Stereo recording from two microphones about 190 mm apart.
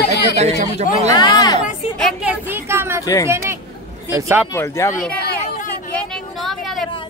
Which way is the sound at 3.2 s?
15° right (ahead or behind).